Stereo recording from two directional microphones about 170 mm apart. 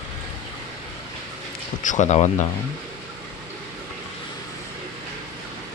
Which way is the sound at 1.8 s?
45° left (ahead or behind).